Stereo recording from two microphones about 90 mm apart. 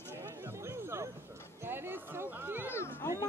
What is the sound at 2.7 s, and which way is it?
Cat, 25° left (ahead or behind).